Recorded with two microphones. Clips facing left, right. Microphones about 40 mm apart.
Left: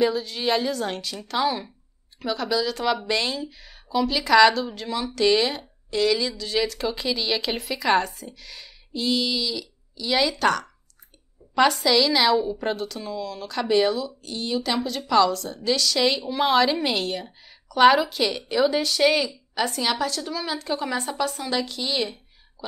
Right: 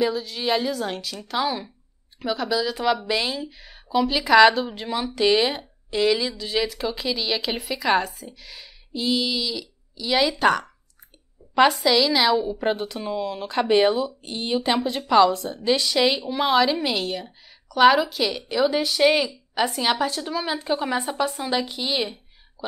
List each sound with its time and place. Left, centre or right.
0.0 s a woman's voice: centre
16.3 s a woman's voice: centre